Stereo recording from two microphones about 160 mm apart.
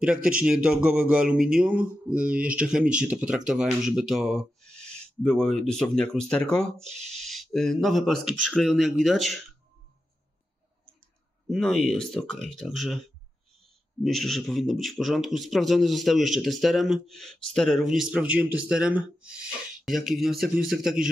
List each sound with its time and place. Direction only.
0.0 s speech: 5° right (ahead or behind)
11.4 s speech: centre (ahead or behind)